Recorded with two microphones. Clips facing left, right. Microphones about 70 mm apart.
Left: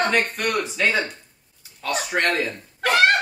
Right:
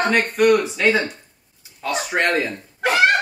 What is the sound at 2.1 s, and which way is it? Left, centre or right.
Speech, right.